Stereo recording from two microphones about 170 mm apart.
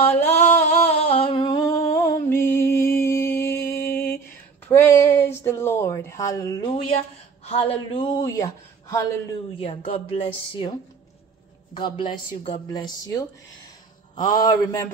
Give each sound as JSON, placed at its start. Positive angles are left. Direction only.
{"t": 0.4, "sound": "humming", "side_deg": 40}
{"t": 4.6, "sound": "a sound", "side_deg": 15}
{"t": 7.4, "sound": "a woman's voice", "side_deg": 35}
{"t": 9.6, "sound": "a woman's voice", "side_deg": 35}
{"t": 11.7, "sound": "a woman's voice", "side_deg": 30}